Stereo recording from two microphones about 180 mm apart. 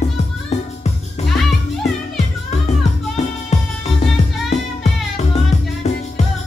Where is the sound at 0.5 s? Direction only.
40° left (ahead or behind).